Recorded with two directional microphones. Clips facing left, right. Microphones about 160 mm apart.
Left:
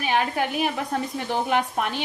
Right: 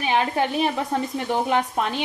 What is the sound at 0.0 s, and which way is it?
Speech, 20° right (ahead or behind).